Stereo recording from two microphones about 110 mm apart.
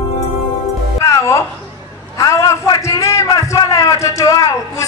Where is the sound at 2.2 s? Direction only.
30° left (ahead or behind).